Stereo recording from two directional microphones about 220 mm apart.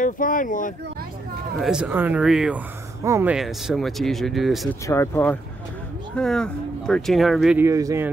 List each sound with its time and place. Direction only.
0.0 s speech: 40° left (ahead or behind)
1.6 s speech: 5° right (ahead or behind)
4.8 s speech: 10° left (ahead or behind); by 8.1 s 15° right (ahead or behind)